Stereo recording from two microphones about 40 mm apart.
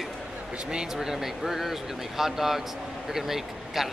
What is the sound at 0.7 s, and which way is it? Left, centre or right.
Speech, centre.